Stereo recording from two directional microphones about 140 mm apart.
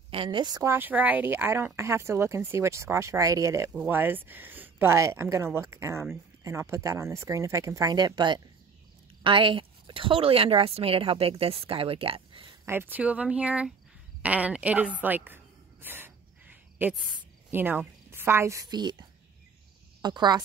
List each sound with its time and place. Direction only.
0.1 s a woman's voice: 35° right (ahead or behind)
12.6 s speech: 15° right (ahead or behind)
14.2 s a sound: 10° right (ahead or behind)
17.5 s a woman's voice: 15° right (ahead or behind); by 20.4 s 30° right (ahead or behind)